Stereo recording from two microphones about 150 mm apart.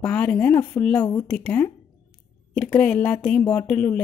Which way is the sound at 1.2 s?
10° left (ahead or behind).